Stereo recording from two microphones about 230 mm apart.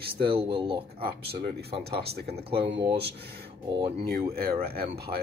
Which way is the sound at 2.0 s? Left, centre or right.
Right.